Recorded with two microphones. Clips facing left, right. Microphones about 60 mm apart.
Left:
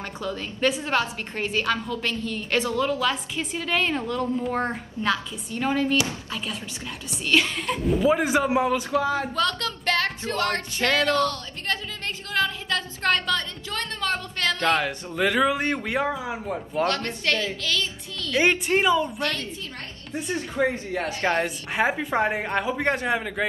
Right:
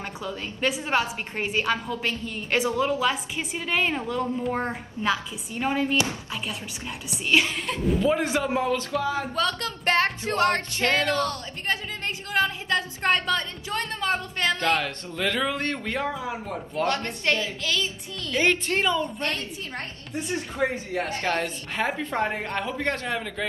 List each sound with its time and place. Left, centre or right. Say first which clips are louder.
0.0 s a woman's voice: left 2 dB; centre
7.2 s a man's voice: left 1 dB; centre
9.3 s a woman's voice: left 1 dB; centre
9.8 s speech: right 2 dB; right
14.6 s speech: left 2 dB; centre
16.8 s speech: even; right
18.4 s speech: left 2 dB; centre
20.6 s a man's voice: left 2 dB; centre
21.2 s speech: left 3 dB; left